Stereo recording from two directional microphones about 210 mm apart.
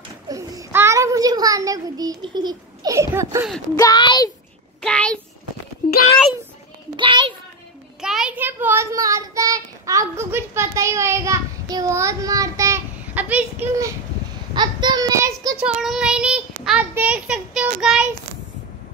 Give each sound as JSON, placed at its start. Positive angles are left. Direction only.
{"t": 0.3, "sound": "a sound", "side_deg": -15}
{"t": 3.7, "sound": "a child's voice", "side_deg": 20}
{"t": 4.8, "sound": "a child's voice", "side_deg": 5}
{"t": 7.0, "sound": "a sound", "side_deg": -25}
{"t": 8.0, "sound": "a child's voice", "side_deg": -5}
{"t": 15.6, "sound": "a child's voice", "side_deg": -5}